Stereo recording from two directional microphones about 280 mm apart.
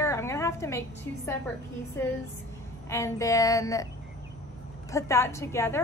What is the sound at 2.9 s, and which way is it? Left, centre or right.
A woman's voice, centre.